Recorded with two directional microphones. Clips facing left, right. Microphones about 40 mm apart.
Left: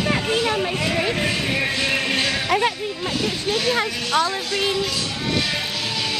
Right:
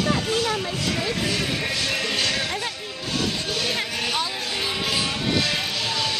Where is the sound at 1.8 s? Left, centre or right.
Left.